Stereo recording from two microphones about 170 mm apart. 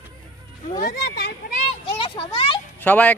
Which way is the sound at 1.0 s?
80° left.